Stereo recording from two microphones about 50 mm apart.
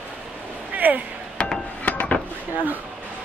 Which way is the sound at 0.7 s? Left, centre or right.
Right.